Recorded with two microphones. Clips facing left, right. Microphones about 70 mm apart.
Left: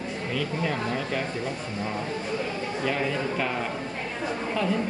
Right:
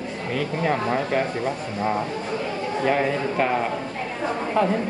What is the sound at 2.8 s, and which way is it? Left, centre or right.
Speech, right.